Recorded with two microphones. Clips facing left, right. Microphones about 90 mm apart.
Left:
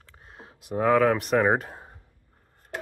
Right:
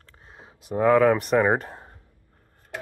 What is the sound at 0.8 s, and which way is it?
Speech, centre (ahead or behind).